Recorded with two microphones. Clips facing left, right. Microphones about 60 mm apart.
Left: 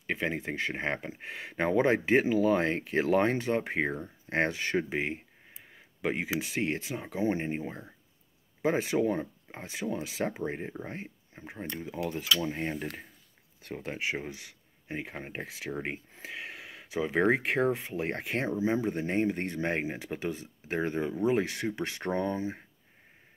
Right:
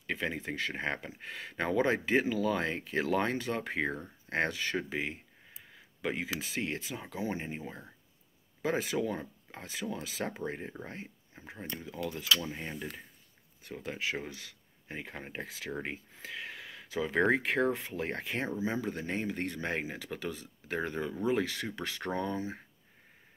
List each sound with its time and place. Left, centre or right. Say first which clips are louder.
0.0 s speech: left 3 dB; left
15.8 s a sound: left 3 dB; left
17.4 s speech: left 2 dB; left